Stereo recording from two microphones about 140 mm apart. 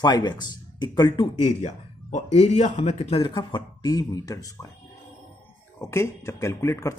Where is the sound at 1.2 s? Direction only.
55° left (ahead or behind); by 4.6 s 25° left (ahead or behind).